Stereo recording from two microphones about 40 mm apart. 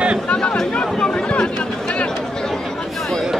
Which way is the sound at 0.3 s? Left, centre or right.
Left.